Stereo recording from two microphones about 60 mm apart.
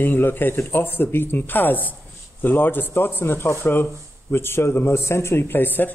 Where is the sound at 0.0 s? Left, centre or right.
Left.